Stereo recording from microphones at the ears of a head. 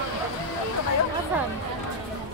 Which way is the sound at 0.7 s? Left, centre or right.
Left.